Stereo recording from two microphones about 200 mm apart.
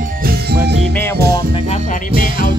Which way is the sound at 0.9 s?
10° left (ahead or behind).